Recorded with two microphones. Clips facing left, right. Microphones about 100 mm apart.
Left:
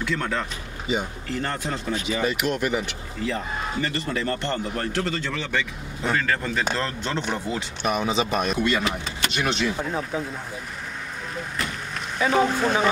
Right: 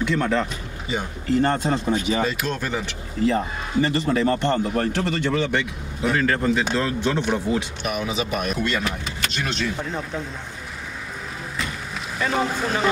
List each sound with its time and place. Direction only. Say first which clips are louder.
0.1 s speech: right 5 dB; 20° right (ahead or behind)
2.2 s speech: left 1 dB; 15° left (ahead or behind)
3.3 s speech: right 5 dB; 20° right (ahead or behind)
7.8 s speech: left 2 dB; 30° left (ahead or behind)
8.5 s speech: left 1 dB; 5° left (ahead or behind)
12.2 s speech: left 3 dB; 5° left (ahead or behind)